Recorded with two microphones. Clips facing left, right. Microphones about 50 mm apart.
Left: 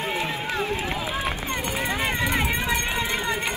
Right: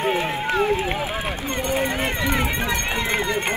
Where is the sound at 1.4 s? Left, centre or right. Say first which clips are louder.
Right 3 dB; centre.